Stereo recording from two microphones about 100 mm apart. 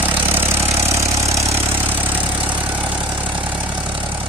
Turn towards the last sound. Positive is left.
turn(degrees=-15)  # may be behind; listen again after turning